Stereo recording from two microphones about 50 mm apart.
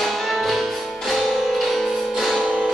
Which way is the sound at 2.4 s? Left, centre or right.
Right.